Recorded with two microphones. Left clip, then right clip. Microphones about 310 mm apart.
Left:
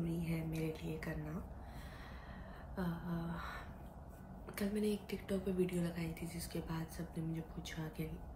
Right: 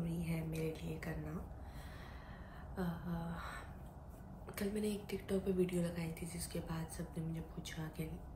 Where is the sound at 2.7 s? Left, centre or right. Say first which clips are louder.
Even; centre.